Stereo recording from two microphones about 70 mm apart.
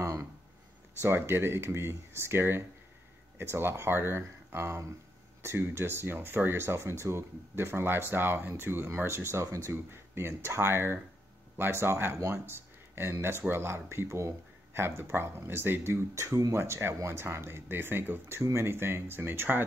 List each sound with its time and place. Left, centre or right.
0.0 s a sound: right
1.0 s speech: right
16.5 s speech: right
18.4 s speech: right